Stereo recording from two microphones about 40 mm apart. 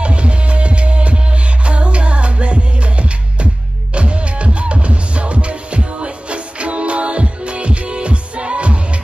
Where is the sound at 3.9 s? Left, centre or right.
Right.